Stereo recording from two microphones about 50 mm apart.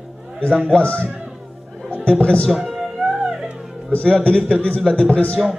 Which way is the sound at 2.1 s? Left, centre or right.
Centre.